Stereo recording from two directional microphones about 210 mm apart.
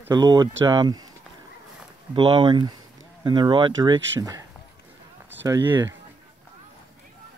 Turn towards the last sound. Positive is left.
turn(degrees=-15)  # may be behind; listen again after turning